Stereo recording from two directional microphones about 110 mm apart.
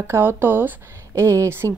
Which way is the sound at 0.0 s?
20° right (ahead or behind).